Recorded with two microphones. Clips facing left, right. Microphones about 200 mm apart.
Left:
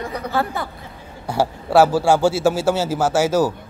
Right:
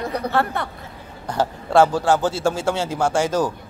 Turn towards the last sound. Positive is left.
turn(degrees=5)  # may be behind; listen again after turning